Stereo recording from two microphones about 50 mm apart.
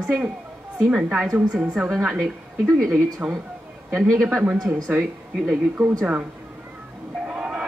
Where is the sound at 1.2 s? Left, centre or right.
Centre.